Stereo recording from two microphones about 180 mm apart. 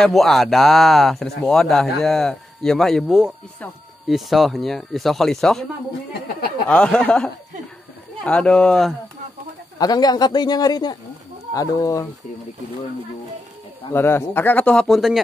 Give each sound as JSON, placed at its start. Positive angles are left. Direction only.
{"t": 0.0, "sound": "speech", "side_deg": 0}
{"t": 6.7, "sound": "speech", "side_deg": 5}
{"t": 8.3, "sound": "speech", "side_deg": 5}
{"t": 9.8, "sound": "speech", "side_deg": 20}
{"t": 13.9, "sound": "speech", "side_deg": 10}